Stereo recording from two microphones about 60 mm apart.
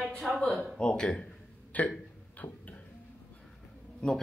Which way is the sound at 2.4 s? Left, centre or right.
Left.